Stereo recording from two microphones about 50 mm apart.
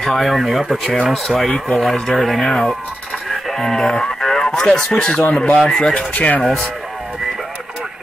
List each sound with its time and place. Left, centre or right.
0.0 s speech: centre
6.1 s speech: left
6.4 s speech: centre